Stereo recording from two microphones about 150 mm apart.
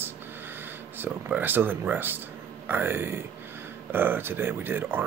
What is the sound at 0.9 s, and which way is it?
Speech, 15° right (ahead or behind).